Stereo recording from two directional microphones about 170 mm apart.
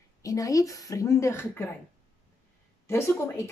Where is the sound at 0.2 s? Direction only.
20° left (ahead or behind).